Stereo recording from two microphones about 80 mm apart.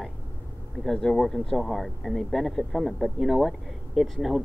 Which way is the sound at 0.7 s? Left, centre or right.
Centre.